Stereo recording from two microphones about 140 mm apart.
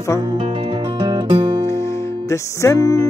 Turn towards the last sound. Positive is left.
turn(degrees=25)  # may be behind; listen again after turning